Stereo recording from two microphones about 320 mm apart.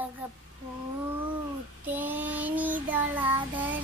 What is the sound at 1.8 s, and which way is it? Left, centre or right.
Child singing, centre.